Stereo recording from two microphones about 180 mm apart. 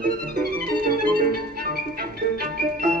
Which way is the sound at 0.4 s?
55° right (ahead or behind).